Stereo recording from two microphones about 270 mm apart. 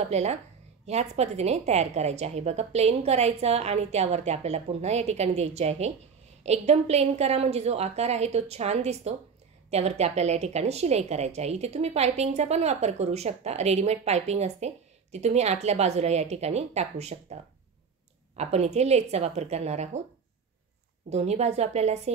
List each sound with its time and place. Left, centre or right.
0.0 s a woman's voice: right
21.1 s a woman's voice: right